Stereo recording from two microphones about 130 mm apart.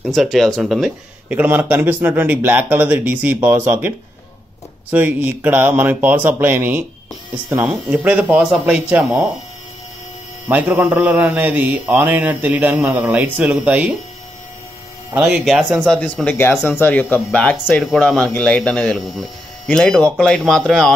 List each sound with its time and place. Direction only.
0.0 s speech: centre (ahead or behind)
1.3 s a man's voice: 10° right (ahead or behind)
4.9 s a man's voice: 15° right (ahead or behind)
10.5 s a man's voice: 10° right (ahead or behind)
15.1 s speech: 5° right (ahead or behind)